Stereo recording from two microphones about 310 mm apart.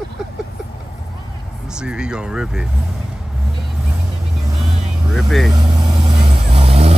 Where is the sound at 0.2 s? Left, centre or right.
Centre.